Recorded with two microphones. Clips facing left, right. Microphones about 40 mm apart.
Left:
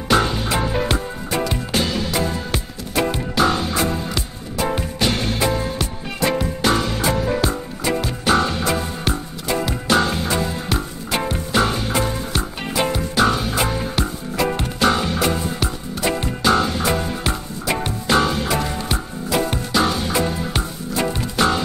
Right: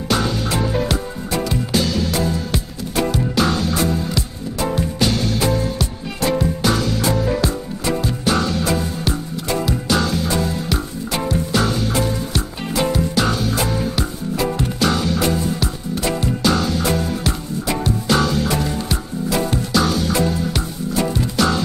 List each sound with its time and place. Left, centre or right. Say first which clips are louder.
0.1 s music: left 2 dB; left
3.3 s music: left 2 dB; left
8.4 s music: even; left
12.9 s music: left 1 dB; left
13.3 s music: even; left